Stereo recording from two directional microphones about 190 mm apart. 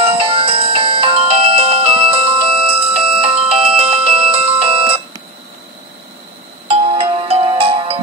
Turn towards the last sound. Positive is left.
turn(degrees=-30)  # may be behind; listen again after turning